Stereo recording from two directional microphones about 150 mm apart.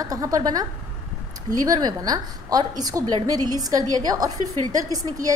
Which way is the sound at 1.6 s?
25° right (ahead or behind).